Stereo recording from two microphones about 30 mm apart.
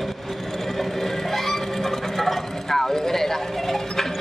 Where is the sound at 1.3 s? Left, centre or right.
Centre.